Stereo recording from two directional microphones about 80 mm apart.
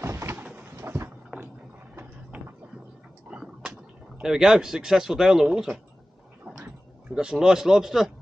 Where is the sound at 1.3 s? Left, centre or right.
Centre.